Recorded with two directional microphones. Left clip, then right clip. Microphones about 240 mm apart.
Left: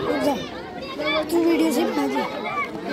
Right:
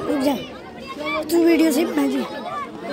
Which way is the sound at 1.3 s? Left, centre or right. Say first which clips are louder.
Right 7 dB; right.